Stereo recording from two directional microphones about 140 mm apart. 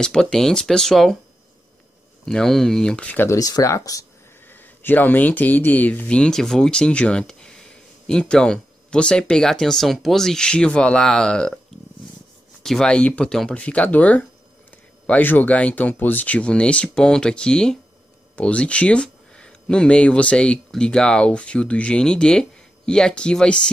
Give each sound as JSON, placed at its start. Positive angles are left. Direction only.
{"t": 0.0, "sound": "speech", "side_deg": 5}
{"t": 2.2, "sound": "speech", "side_deg": 5}
{"t": 3.3, "sound": "speech", "side_deg": 25}
{"t": 12.6, "sound": "speech", "side_deg": 5}